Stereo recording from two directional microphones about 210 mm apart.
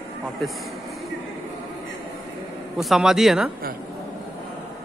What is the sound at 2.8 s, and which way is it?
Speech, centre (ahead or behind).